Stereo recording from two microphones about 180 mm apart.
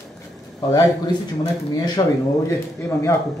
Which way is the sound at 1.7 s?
20° left (ahead or behind).